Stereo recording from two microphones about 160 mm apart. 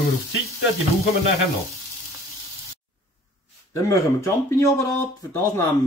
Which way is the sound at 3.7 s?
20° left (ahead or behind).